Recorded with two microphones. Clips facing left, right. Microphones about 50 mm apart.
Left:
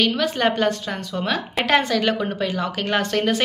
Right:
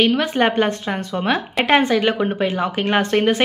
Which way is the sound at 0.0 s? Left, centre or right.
Right.